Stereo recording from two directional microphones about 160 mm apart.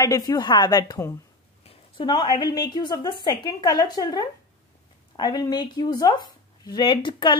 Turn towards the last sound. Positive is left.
turn(degrees=30)  # may be behind; listen again after turning